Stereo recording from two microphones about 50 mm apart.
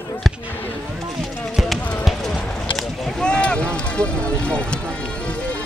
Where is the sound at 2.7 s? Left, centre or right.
Centre.